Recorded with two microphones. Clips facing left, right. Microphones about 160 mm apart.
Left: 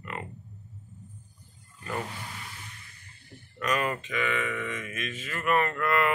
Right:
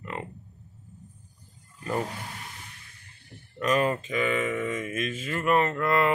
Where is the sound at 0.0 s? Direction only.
25° right (ahead or behind).